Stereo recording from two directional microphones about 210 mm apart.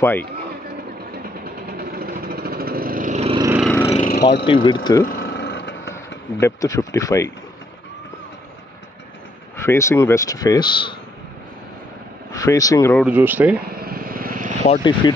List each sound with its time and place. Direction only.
0.0 s speech: 10° left (ahead or behind)
1.4 s vehicle: 45° right (ahead or behind); by 3.4 s 30° right (ahead or behind)
3.6 s vehicle: 10° left (ahead or behind)
4.1 s speech: 55° left (ahead or behind)
4.6 s speech: 20° left (ahead or behind)
5.0 s vehicle: 50° left (ahead or behind)
6.4 s speech: 15° left (ahead or behind)
9.6 s speech: 10° left (ahead or behind)
12.3 s speech: 15° left (ahead or behind)
13.0 s speech: 10° right (ahead or behind)
13.7 s vehicle: 45° right (ahead or behind)
14.7 s speech: 20° left (ahead or behind)